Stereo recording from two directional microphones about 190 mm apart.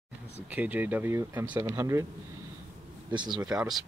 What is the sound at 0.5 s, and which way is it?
Speech, 10° right (ahead or behind).